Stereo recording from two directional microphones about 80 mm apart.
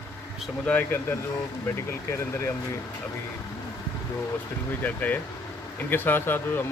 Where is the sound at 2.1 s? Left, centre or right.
Left.